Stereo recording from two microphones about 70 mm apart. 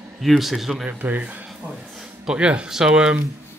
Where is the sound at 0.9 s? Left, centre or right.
Right.